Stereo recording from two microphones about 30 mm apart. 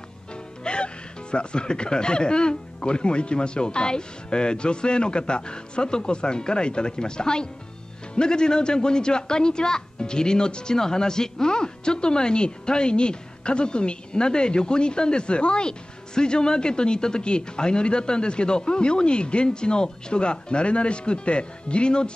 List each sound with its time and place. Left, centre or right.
0.7 s a man's voice: left